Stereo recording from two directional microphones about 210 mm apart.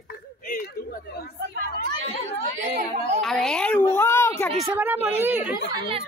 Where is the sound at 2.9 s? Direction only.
35° right (ahead or behind).